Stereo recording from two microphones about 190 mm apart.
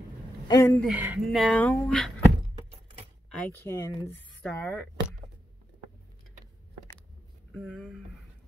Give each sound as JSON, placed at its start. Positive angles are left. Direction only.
{"t": 0.5, "sound": "speech", "side_deg": 20}
{"t": 0.7, "sound": "speech", "side_deg": -5}
{"t": 3.3, "sound": "speech", "side_deg": 10}
{"t": 7.5, "sound": "speech", "side_deg": 0}